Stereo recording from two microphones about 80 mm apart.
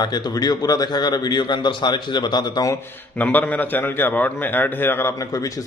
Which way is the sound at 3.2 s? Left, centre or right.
Left.